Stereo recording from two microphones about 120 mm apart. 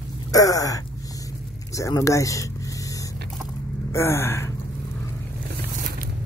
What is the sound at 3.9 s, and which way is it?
Gasp, 20° left (ahead or behind).